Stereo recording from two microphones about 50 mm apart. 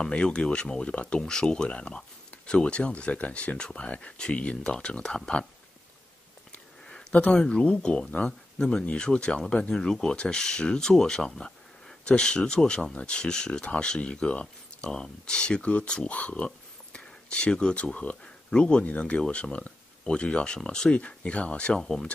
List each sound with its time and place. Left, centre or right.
0.1 s speech: left
7.1 s speech: left